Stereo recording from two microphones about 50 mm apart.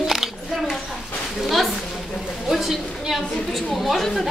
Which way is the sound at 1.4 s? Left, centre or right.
Centre.